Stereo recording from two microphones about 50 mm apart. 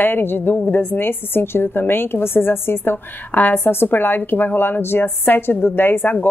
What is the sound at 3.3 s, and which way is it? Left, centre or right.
Speech, left.